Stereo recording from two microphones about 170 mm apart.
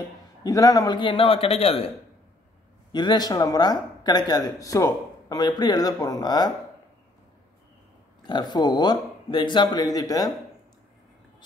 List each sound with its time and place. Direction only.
0.4 s a man's voice: 20° left (ahead or behind)
2.9 s speech: 25° left (ahead or behind)
8.2 s speech: 25° left (ahead or behind)